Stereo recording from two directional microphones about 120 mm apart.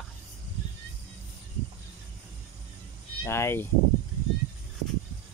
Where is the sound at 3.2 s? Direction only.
20° left (ahead or behind).